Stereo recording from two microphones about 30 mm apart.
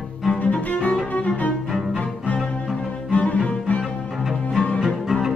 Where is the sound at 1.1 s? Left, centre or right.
Left.